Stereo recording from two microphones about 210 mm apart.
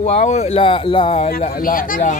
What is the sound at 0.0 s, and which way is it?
A man's voice, 30° left (ahead or behind).